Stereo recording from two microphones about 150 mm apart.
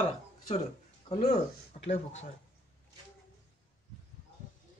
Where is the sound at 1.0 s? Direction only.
45° left (ahead or behind).